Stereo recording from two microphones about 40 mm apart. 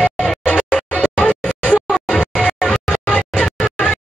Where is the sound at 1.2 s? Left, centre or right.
Left.